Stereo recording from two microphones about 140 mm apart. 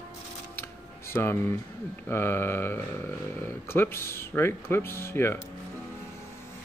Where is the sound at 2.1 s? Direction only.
15° left (ahead or behind).